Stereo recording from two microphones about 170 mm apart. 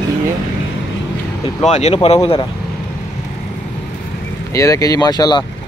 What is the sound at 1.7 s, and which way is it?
Speech, 40° left (ahead or behind).